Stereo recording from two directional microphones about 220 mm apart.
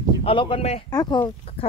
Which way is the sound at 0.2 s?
25° left (ahead or behind).